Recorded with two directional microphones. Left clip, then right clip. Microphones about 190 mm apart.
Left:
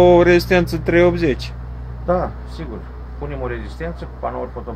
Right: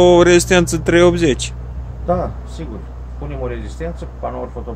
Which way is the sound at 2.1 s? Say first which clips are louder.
Even; centre (ahead or behind).